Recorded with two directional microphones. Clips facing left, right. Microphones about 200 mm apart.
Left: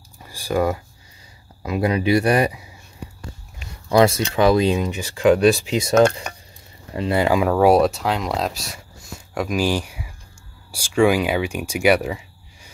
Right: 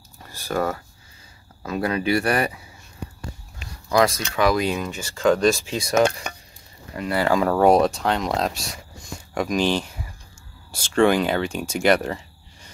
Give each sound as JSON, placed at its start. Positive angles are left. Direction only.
{"t": 0.2, "sound": "a sound", "side_deg": 10}
{"t": 1.6, "sound": "speech", "side_deg": 15}
{"t": 3.9, "sound": "speech", "side_deg": 25}
{"t": 7.0, "sound": "speech", "side_deg": 20}